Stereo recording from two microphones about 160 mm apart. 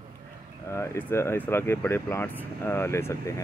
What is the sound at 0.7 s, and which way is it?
Speech, 15° left (ahead or behind).